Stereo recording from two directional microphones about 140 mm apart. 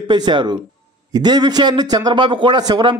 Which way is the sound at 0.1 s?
35° right (ahead or behind).